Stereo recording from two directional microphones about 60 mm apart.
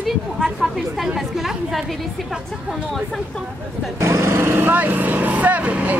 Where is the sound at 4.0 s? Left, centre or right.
Right.